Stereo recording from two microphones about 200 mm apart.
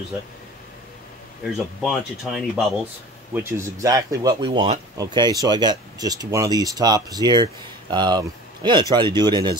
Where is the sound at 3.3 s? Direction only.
10° right (ahead or behind).